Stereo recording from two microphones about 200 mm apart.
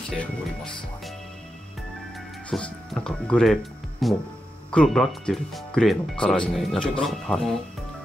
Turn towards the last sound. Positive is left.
turn(degrees=0)  # may be behind; listen again after turning